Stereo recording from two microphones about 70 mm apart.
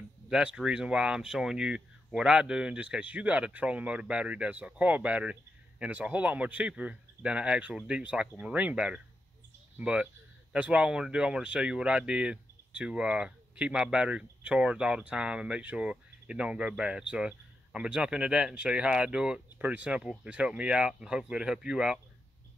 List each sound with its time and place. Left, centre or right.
0.3 s speech: centre